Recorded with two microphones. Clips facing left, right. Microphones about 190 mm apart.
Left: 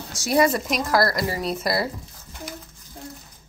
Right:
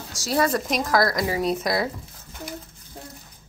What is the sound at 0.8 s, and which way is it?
A woman's voice, 5° left (ahead or behind).